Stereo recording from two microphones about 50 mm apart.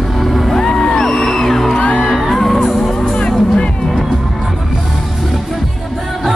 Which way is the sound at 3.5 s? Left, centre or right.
Centre.